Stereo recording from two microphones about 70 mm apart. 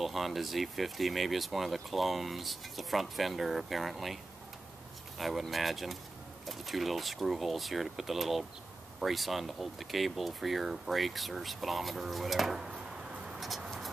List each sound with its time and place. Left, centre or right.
0.0 s speech: centre
5.2 s speech: centre